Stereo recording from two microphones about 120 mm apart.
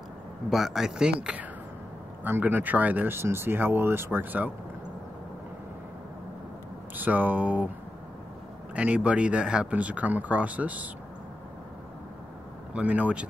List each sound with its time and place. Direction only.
0.5 s speech: 5° right (ahead or behind)
7.0 s speech: 15° right (ahead or behind)
8.7 s speech: 10° right (ahead or behind)
12.7 s speech: 10° right (ahead or behind)